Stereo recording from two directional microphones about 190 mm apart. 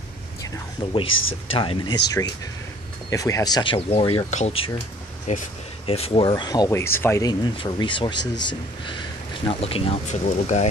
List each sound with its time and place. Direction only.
1.5 s speech: 30° left (ahead or behind)